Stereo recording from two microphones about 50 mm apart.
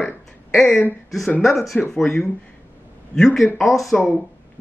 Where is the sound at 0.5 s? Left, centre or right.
Centre.